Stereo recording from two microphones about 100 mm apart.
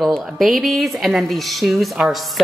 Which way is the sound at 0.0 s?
Centre (ahead or behind).